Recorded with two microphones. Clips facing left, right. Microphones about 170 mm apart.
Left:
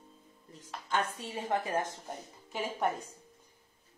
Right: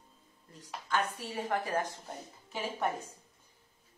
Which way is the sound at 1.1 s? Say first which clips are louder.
Left 1 dB; 20° left (ahead or behind).